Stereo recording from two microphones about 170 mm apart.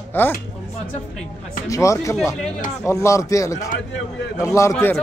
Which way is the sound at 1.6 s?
20° left (ahead or behind).